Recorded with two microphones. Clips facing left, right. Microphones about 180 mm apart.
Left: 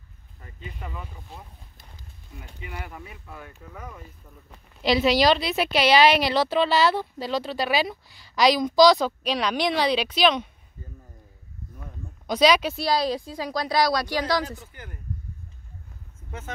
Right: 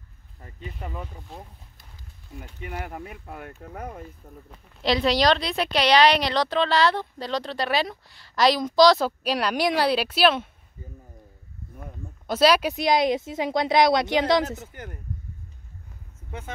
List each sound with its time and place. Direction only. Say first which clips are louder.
0.6 s speech: right 3 dB; 40° right (ahead or behind)
2.6 s speech: right 4 dB; 55° right (ahead or behind)
4.8 s speech: left 1 dB; centre (ahead or behind); by 10.9 s 15° right (ahead or behind)
12.3 s speech: even; 5° right (ahead or behind)
12.7 s speech: right 3 dB; 20° right (ahead or behind)
14.7 s speech: right 4 dB; 45° right (ahead or behind)
16.3 s speech: even; 15° right (ahead or behind)